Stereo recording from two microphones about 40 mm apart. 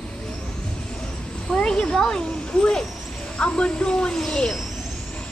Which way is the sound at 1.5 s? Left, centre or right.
Left.